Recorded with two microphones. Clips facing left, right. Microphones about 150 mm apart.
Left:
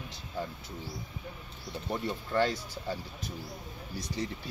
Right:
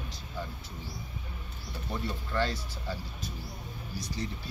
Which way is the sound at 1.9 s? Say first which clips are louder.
Left 3 dB; 20° left (ahead or behind).